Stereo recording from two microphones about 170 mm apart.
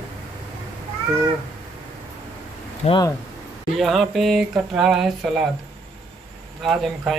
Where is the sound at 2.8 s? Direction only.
40° left (ahead or behind).